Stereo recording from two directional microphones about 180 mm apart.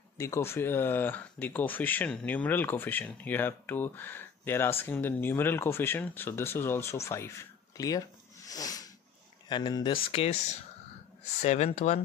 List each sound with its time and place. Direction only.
0.2 s speech: 15° left (ahead or behind)
8.5 s a sound: 20° left (ahead or behind)
9.5 s speech: 25° left (ahead or behind)
10.1 s speech: 35° left (ahead or behind)
11.4 s speech: 40° left (ahead or behind)